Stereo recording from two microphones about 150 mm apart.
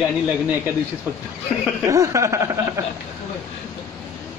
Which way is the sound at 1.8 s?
20° right (ahead or behind).